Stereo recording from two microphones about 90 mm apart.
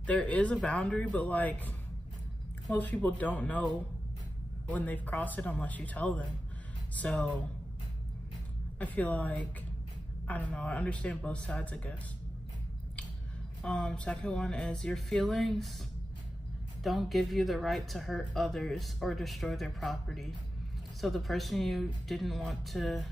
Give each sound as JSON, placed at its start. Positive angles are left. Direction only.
{"t": 0.0, "sound": "speech", "side_deg": 15}
{"t": 2.7, "sound": "speech", "side_deg": 20}
{"t": 8.7, "sound": "speech", "side_deg": 15}
{"t": 13.6, "sound": "speech", "side_deg": 10}
{"t": 16.8, "sound": "a woman's voice", "side_deg": 0}